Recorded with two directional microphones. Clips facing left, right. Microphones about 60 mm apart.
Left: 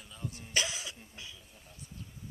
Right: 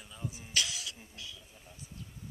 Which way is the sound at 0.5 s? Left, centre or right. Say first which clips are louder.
Left 2 dB; left.